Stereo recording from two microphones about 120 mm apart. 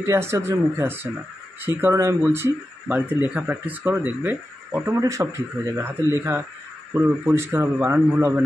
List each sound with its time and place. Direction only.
0.0 s speech: 20° right (ahead or behind)